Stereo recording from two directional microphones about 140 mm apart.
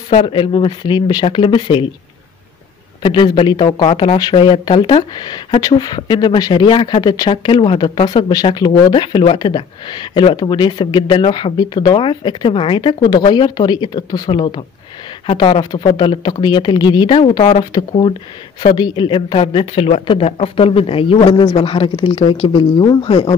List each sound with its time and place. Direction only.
0.1 s speech: 40° left (ahead or behind)
3.0 s speech: 35° left (ahead or behind)